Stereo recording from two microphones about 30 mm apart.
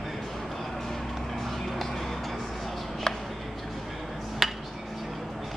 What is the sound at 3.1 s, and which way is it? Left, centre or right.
Music, centre.